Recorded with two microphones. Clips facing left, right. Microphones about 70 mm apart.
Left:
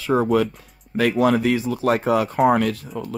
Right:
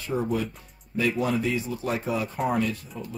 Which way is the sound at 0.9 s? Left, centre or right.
Left.